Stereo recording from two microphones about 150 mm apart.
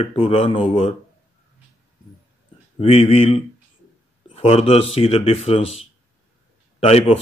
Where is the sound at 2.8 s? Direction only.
40° left (ahead or behind).